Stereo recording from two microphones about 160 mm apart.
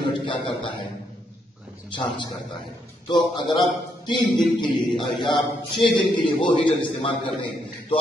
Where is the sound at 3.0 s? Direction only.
30° left (ahead or behind).